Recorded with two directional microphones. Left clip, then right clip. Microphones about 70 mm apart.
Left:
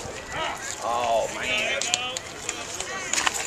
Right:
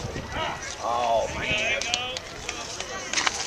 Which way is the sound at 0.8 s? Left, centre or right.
Left.